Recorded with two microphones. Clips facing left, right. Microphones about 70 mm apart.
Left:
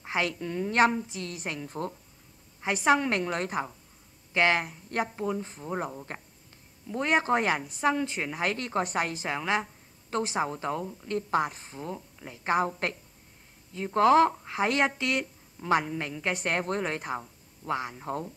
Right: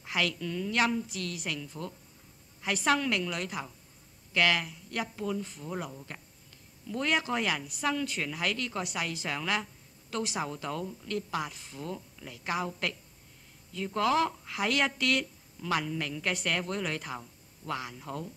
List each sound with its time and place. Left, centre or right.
0.0 s a woman's voice: left
2.6 s speech: left
3.1 s a woman's voice: left
7.6 s a woman's voice: left